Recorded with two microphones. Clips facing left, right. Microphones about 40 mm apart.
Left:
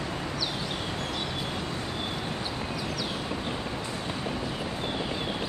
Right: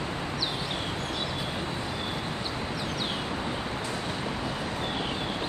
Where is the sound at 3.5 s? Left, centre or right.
Right.